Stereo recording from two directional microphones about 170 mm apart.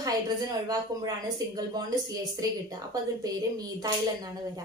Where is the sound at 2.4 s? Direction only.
20° right (ahead or behind).